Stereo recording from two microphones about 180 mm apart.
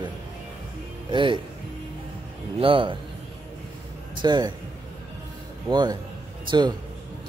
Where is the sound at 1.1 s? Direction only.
25° right (ahead or behind).